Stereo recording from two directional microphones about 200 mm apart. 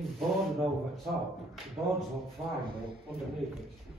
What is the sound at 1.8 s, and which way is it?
Speech, 15° right (ahead or behind).